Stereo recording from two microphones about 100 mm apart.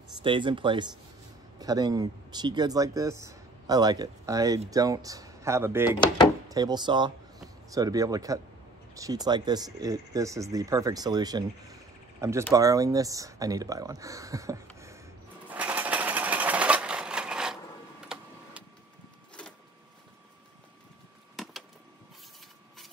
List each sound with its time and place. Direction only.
0.2 s speech: 55° right (ahead or behind)
1.6 s speech: 40° right (ahead or behind); by 5.9 s 25° right (ahead or behind)
6.5 s speech: 45° right (ahead or behind)
7.7 s speech: 35° right (ahead or behind)
12.2 s speech: 30° right (ahead or behind)
15.5 s sewing machine: 15° right (ahead or behind)
18.0 s printer: 10° right (ahead or behind)
21.4 s a sound: centre (ahead or behind)